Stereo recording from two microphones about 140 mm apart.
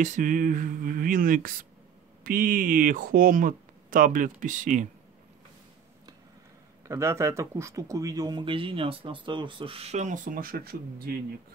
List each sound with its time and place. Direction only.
0.0 s speech: 65° right (ahead or behind)
6.9 s speech: 20° right (ahead or behind); by 11.1 s 90° right